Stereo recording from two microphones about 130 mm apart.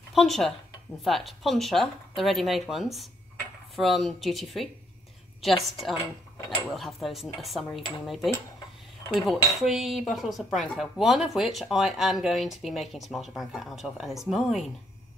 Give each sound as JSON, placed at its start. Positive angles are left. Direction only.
{"t": 0.1, "sound": "speech", "side_deg": 0}
{"t": 9.1, "sound": "speech", "side_deg": 0}